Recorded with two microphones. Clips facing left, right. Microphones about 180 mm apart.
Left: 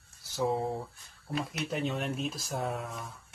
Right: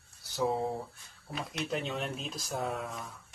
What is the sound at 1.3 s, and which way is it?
Speech, centre (ahead or behind).